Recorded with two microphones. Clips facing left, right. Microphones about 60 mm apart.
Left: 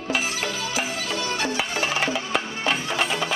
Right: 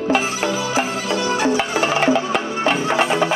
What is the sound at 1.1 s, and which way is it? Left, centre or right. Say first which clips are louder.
Music: right 9 dB; centre.